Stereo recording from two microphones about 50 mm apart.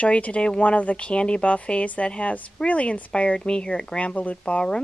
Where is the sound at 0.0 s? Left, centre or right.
Left.